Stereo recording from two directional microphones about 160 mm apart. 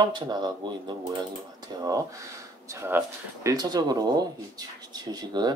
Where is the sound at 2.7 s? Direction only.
15° right (ahead or behind).